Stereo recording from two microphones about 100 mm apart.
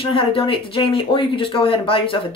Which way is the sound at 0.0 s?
65° left (ahead or behind).